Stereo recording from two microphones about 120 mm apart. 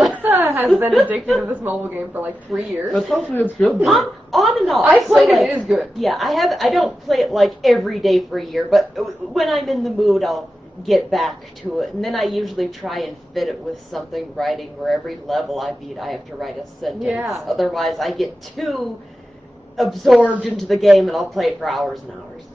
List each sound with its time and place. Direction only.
0.1 s a sound: 15° right (ahead or behind)
0.8 s speech: 10° right (ahead or behind)
2.9 s a woman's voice: centre (ahead or behind)
3.3 s speech: 15° left (ahead or behind)
3.8 s a woman's voice: centre (ahead or behind)